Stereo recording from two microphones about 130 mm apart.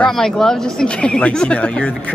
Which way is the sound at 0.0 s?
5° left (ahead or behind).